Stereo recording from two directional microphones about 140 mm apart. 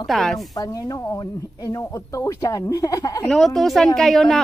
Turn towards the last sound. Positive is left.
turn(degrees=0)  # may be behind; listen again after turning